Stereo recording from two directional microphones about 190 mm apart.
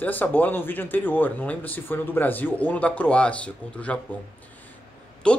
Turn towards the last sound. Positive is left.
turn(degrees=5)  # may be behind; listen again after turning